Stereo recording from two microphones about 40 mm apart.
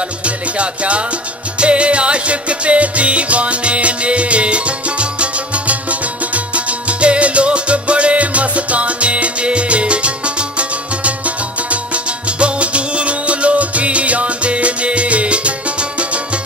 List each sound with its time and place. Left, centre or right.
0.2 s music: right